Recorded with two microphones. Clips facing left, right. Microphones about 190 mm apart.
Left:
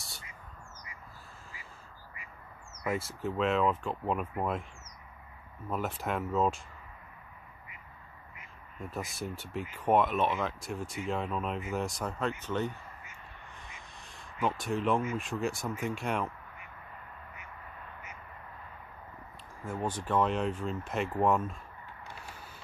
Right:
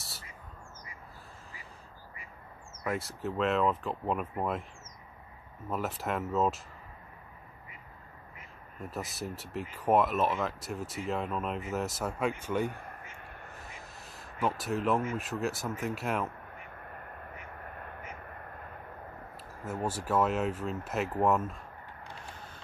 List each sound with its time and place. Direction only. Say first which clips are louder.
2.8 s speech: left 1 dB; centre (ahead or behind)
5.7 s speech: even; centre (ahead or behind)
8.7 s speech: even; centre (ahead or behind)
12.7 s crow: right 4 dB; 55° right (ahead or behind)
13.5 s a sound: right 3 dB; 5° right (ahead or behind)
15.1 s speech: even; centre (ahead or behind)
16.5 s quack: right 3 dB; 55° right (ahead or behind)
19.3 s speech: even; 5° right (ahead or behind)
22.3 s vehicle: right 1 dB; 10° left (ahead or behind)